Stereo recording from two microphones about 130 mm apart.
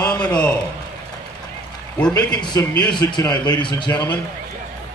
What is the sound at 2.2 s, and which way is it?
Speech, 5° left (ahead or behind).